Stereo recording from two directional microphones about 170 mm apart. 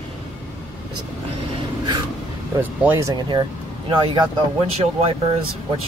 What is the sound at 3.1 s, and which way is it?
Speech, 25° right (ahead or behind).